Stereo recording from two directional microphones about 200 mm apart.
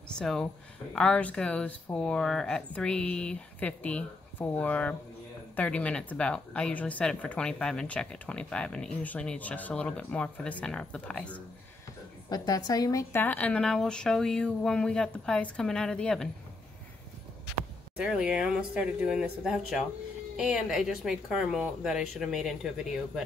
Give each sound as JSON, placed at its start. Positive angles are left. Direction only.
{"t": 0.1, "sound": "speech", "side_deg": 5}
{"t": 12.3, "sound": "speech", "side_deg": 20}
{"t": 17.9, "sound": "speech", "side_deg": -5}